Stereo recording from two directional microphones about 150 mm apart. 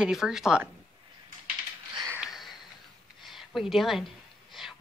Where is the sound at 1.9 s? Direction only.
25° right (ahead or behind).